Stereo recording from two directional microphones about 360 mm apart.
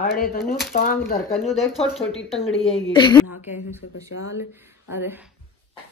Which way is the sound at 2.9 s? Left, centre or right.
Centre.